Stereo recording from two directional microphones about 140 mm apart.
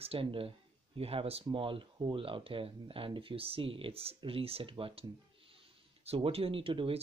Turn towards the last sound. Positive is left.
turn(degrees=-40)  # may be behind; listen again after turning